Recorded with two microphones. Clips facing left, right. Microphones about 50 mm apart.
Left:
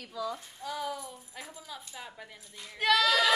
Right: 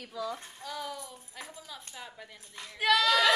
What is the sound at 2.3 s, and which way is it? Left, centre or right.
Speech, right.